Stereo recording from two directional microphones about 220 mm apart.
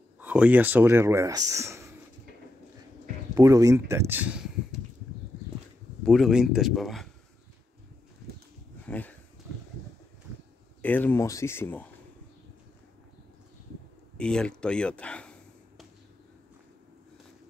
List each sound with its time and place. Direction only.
0.2 s speech: 5° right (ahead or behind)
3.3 s speech: 15° right (ahead or behind)
6.0 s speech: centre (ahead or behind)
8.8 s speech: 5° left (ahead or behind)
10.8 s speech: 5° left (ahead or behind)
14.1 s speech: 5° left (ahead or behind)